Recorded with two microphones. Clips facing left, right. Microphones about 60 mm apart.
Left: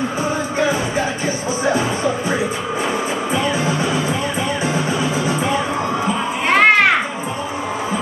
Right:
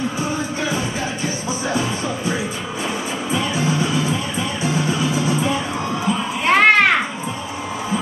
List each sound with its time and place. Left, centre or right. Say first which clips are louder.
1.2 s music: left 4 dB; left
6.4 s children playing: even; centre